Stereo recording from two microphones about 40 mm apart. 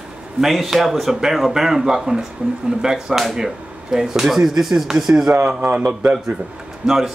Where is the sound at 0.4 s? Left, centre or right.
Centre.